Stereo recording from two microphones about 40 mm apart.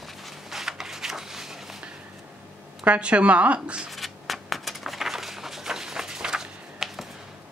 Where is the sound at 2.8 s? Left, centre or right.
Right.